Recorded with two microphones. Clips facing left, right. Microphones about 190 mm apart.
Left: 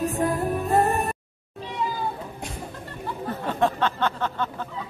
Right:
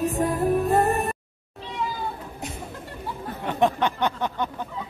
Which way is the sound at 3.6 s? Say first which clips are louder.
Right 2 dB; 15° right (ahead or behind).